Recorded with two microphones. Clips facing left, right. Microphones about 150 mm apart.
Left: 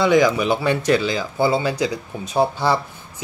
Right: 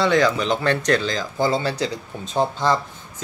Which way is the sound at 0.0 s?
10° left (ahead or behind).